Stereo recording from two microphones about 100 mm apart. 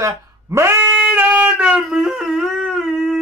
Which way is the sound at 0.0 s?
30° right (ahead or behind).